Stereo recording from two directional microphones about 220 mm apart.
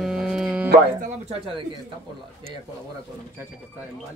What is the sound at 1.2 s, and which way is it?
Speech, 25° right (ahead or behind).